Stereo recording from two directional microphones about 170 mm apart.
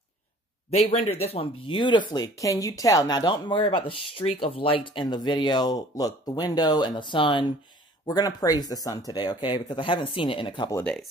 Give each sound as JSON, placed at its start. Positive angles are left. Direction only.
{"t": 0.7, "sound": "a man's voice", "side_deg": 40}
{"t": 10.8, "sound": "speech", "side_deg": 5}